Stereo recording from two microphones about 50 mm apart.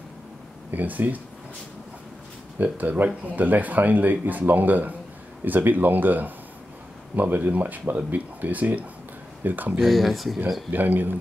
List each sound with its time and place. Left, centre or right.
0.7 s speech: right
2.6 s speech: right
9.8 s speech: centre
10.7 s speech: right